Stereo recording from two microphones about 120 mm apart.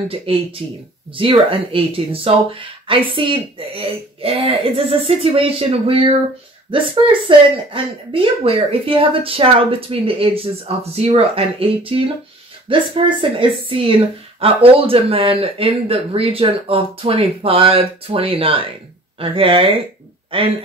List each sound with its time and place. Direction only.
0.3 s speech: 50° right (ahead or behind)